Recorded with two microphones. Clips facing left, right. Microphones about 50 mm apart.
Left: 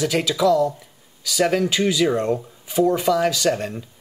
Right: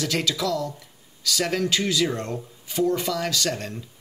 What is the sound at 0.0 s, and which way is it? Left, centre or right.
Speech, centre.